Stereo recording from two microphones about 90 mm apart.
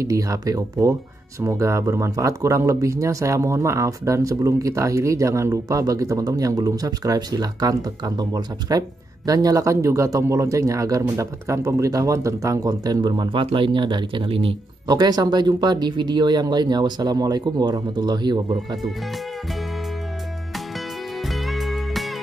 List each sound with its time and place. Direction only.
0.0 s speech: 40° right (ahead or behind); by 14.5 s 75° right (ahead or behind)
14.9 s speech: 50° right (ahead or behind)
21.3 s music: centre (ahead or behind)